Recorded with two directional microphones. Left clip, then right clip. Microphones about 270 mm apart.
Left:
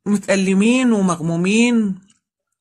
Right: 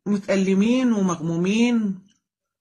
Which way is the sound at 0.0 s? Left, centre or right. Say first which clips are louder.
Left 4 dB; left.